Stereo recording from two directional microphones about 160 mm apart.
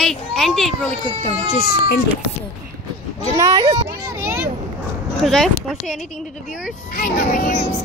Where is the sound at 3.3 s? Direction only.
25° right (ahead or behind).